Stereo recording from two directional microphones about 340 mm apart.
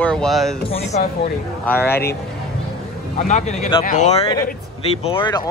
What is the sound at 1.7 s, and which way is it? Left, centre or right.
Speech, centre.